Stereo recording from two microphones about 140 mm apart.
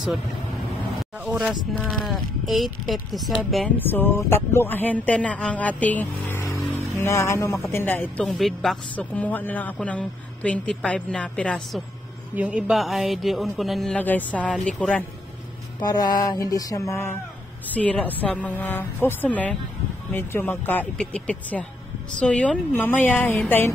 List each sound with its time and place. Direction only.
1.1 s speech: 10° right (ahead or behind)
1.7 s speech: 5° left (ahead or behind)
3.7 s speech: 15° left (ahead or behind)
8.3 s speech: centre (ahead or behind)
12.4 s speech: 5° right (ahead or behind)
13.9 s speech: 10° left (ahead or behind)
15.8 s a sound: 30° left (ahead or behind)
17.7 s speech: 10° left (ahead or behind)